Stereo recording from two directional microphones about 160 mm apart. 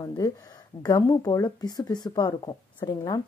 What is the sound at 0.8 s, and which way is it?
A woman's voice, 25° left (ahead or behind).